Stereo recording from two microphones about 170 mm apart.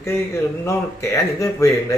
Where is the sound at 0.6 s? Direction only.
15° left (ahead or behind).